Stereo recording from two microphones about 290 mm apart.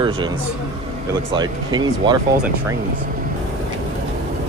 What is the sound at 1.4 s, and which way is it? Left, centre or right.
Speech, centre.